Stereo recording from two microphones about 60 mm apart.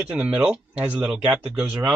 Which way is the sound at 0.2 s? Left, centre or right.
Centre.